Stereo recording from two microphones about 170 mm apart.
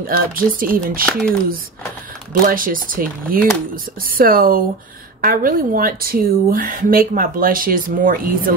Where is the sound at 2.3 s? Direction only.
55° right (ahead or behind).